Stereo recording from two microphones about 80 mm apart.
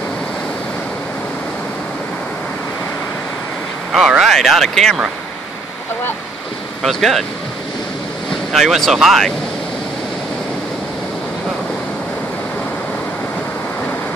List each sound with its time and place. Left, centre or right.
3.9 s speech: centre
6.8 s speech: centre
8.3 s speech: centre